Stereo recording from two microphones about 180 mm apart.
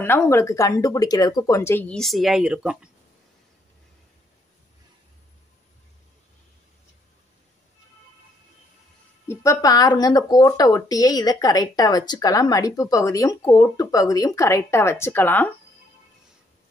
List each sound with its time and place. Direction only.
0.0 s speech: 15° left (ahead or behind); by 2.9 s 5° right (ahead or behind)
9.3 s speech: 15° left (ahead or behind)